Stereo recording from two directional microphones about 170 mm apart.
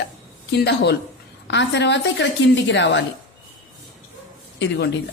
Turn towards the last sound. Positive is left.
turn(degrees=90)